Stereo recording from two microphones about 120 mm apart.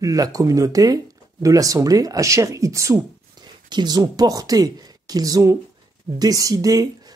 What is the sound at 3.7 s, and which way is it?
Speech, 35° right (ahead or behind).